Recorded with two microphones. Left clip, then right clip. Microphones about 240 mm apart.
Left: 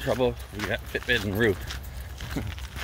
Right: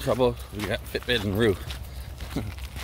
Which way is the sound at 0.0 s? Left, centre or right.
Right.